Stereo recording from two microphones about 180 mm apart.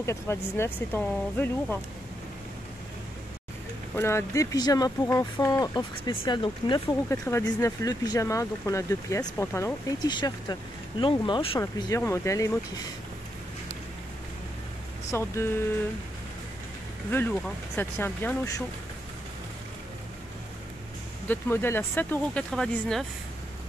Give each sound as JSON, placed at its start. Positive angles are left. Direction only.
{"t": 0.0, "sound": "speech", "side_deg": 15}
{"t": 3.9, "sound": "speech", "side_deg": 15}
{"t": 7.1, "sound": "speech", "side_deg": 15}
{"t": 11.6, "sound": "speech", "side_deg": 15}
{"t": 15.0, "sound": "speech", "side_deg": 15}
{"t": 17.1, "sound": "speech", "side_deg": 10}
{"t": 21.3, "sound": "speech", "side_deg": 10}